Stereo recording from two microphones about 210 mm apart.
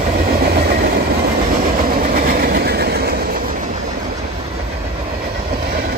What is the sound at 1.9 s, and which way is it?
Train, 45° right (ahead or behind).